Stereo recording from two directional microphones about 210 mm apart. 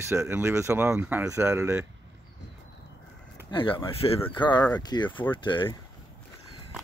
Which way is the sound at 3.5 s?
25° left (ahead or behind).